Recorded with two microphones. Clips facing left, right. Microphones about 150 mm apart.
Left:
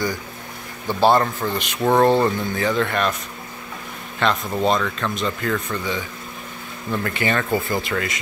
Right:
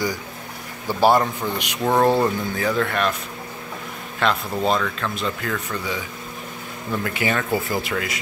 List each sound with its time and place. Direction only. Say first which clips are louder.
0.8 s speech: even; 10° right (ahead or behind)
4.2 s speech: left 1 dB; centre (ahead or behind)